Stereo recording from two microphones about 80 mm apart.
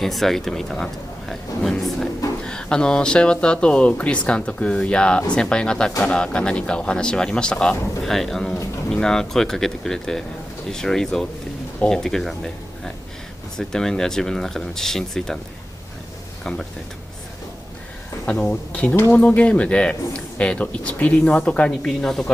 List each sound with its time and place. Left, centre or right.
0.0 s a man's voice: centre
18.2 s a man's voice: centre